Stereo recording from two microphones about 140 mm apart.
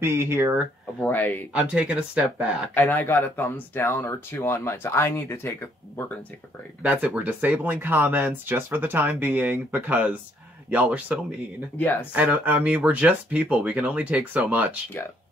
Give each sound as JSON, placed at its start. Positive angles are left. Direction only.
{"t": 0.0, "sound": "speech", "side_deg": -15}
{"t": 1.0, "sound": "speech", "side_deg": 10}
{"t": 1.5, "sound": "speech", "side_deg": -10}
{"t": 2.7, "sound": "speech", "side_deg": 15}
{"t": 6.8, "sound": "speech", "side_deg": -10}
{"t": 11.8, "sound": "speech", "side_deg": 15}
{"t": 12.1, "sound": "speech", "side_deg": -10}